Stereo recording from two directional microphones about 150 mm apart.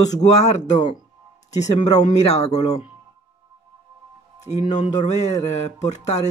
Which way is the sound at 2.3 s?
45° left (ahead or behind).